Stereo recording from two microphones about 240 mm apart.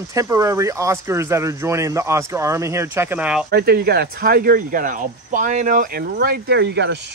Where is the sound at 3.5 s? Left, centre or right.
Right.